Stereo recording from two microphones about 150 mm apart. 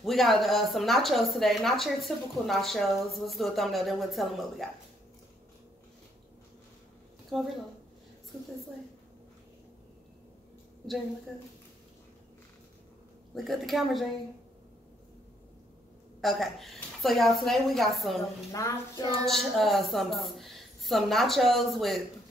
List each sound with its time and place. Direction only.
0.0 s a woman's voice: centre (ahead or behind)
7.2 s speech: centre (ahead or behind)
13.3 s a woman's voice: centre (ahead or behind)
16.2 s a woman's voice: centre (ahead or behind)
18.5 s speech: 20° left (ahead or behind)
19.2 s a woman's voice: centre (ahead or behind)